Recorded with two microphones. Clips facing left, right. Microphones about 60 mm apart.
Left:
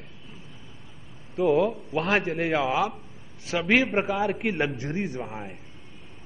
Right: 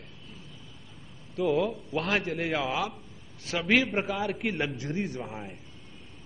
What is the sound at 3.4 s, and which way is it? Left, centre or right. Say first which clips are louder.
Speech: left 3 dB; centre.